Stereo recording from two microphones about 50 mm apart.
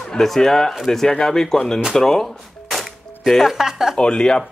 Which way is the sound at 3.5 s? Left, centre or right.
Centre.